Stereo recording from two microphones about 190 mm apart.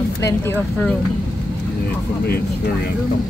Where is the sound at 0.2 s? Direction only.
10° left (ahead or behind).